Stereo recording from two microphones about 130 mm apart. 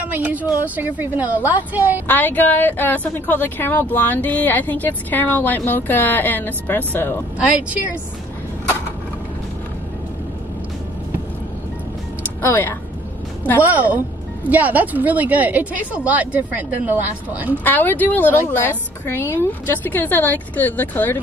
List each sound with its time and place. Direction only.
0.1 s speech: 10° right (ahead or behind)
2.0 s a woman's voice: 15° left (ahead or behind)
12.4 s a woman's voice: 15° left (ahead or behind)
13.6 s speech: 10° right (ahead or behind)
17.6 s a woman's voice: 15° left (ahead or behind)